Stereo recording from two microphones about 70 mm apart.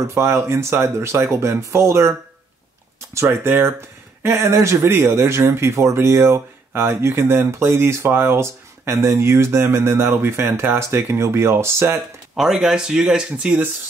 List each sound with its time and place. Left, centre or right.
0.0 s speech: right
3.2 s speech: right
12.4 s speech: centre